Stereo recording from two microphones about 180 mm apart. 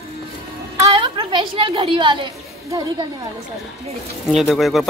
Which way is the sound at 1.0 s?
25° right (ahead or behind).